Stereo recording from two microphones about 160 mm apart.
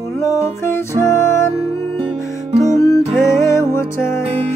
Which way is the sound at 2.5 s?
20° left (ahead or behind).